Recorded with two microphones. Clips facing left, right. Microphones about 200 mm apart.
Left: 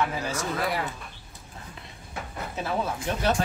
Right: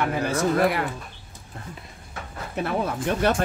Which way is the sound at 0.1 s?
60° right (ahead or behind).